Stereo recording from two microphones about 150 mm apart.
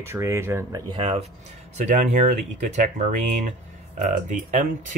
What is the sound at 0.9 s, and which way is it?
Speech, 40° right (ahead or behind).